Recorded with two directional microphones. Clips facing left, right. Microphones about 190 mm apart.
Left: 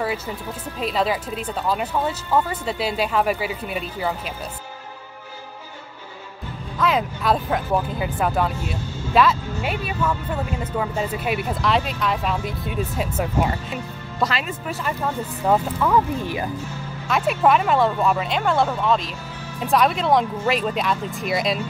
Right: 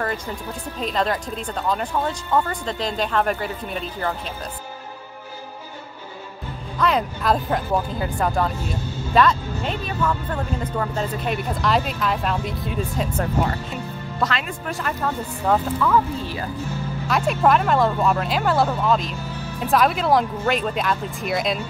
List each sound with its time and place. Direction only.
0.7 s speech: 5° left (ahead or behind)
6.8 s speech: centre (ahead or behind)
15.8 s speech: 15° left (ahead or behind)
17.1 s speech: centre (ahead or behind)